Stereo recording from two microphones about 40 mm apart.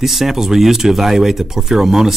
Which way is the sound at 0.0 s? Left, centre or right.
Centre.